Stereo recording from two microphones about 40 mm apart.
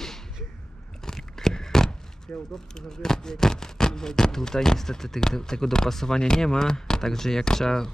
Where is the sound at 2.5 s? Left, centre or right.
Centre.